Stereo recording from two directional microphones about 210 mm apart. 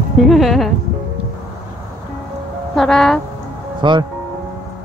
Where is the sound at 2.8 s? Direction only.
Centre (ahead or behind).